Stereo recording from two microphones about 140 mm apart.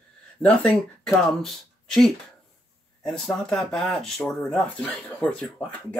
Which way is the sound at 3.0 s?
5° left (ahead or behind).